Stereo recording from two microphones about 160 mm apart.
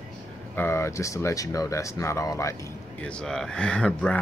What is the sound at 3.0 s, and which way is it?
Speech, 5° left (ahead or behind).